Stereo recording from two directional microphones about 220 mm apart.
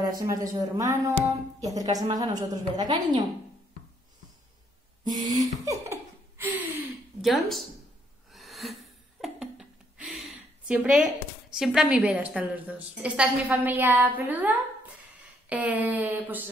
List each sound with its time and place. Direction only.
0.2 s a woman's voice: 15° right (ahead or behind)
5.0 s laughter: 20° right (ahead or behind)
7.2 s speech: centre (ahead or behind)
8.3 s a sound: centre (ahead or behind)
11.5 s a woman's voice: centre (ahead or behind)